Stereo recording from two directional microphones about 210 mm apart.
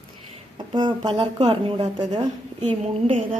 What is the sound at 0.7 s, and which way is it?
A woman's voice, 20° right (ahead or behind).